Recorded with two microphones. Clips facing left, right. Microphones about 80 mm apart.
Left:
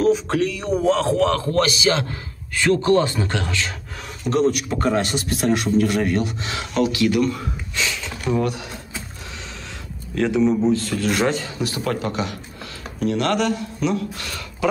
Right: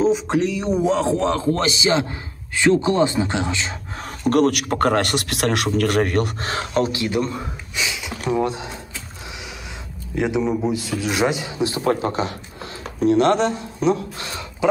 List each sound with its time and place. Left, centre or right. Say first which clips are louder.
0.0 s a man's voice: even; right
4.2 s a man's voice: right 2 dB; right
6.5 s a man's voice: right 1 dB; right
7.7 s a sound: even; centre
10.1 s a man's voice: left 2 dB; centre